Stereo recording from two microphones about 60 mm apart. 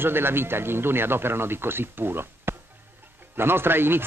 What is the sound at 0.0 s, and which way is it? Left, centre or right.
Speech, right.